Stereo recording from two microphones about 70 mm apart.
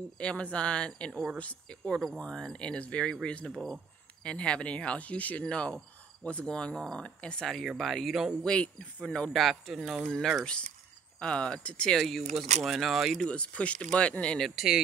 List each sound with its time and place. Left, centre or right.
0.2 s speech: centre
3.5 s speech: centre
4.2 s speech: centre
7.4 s speech: centre
8.5 s speech: centre
14.4 s speech: centre